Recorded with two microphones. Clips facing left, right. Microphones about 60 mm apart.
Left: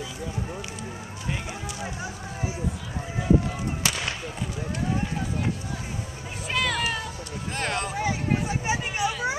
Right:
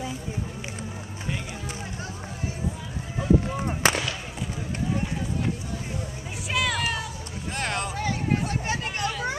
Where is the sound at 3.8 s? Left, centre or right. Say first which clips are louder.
Right 7 dB; right.